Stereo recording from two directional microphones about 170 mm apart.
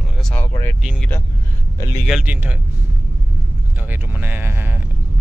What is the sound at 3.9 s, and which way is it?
Speech, 10° right (ahead or behind).